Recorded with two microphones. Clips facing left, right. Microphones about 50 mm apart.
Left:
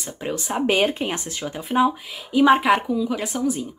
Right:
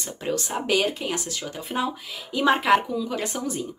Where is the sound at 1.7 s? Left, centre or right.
Centre.